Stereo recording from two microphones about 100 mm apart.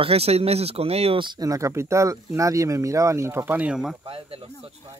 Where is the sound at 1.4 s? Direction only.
35° right (ahead or behind).